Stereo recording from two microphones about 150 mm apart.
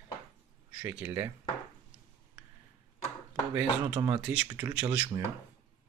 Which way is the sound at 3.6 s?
10° right (ahead or behind).